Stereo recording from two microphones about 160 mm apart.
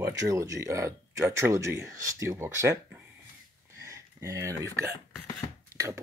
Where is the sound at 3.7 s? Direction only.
20° right (ahead or behind).